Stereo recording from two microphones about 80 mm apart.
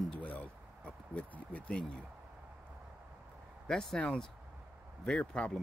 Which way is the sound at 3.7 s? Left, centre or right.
Centre.